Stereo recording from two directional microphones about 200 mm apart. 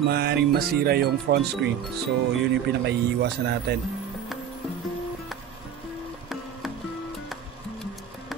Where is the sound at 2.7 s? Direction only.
55° right (ahead or behind).